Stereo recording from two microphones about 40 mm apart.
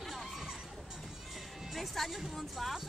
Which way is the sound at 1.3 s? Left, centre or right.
Centre.